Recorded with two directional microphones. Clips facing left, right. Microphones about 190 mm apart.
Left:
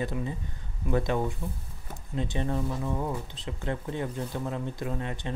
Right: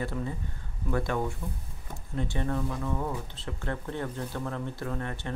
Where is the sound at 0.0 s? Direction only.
15° left (ahead or behind).